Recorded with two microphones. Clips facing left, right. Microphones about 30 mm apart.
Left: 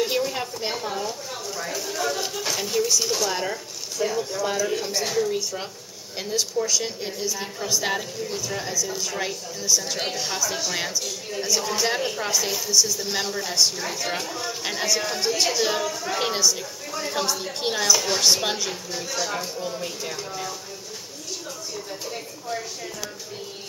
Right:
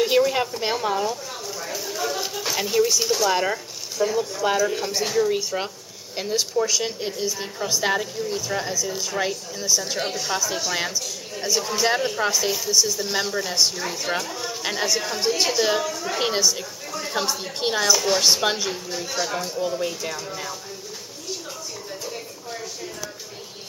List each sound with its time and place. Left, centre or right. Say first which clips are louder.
0.2 s a woman's voice: right 6 dB; right
1.5 s a woman's voice: left 1 dB; centre
3.3 s speech: right 5 dB; right
4.0 s a woman's voice: right 3 dB; centre
5.3 s a woman's voice: right 3 dB; right
9.9 s a woman's voice: right 2 dB; centre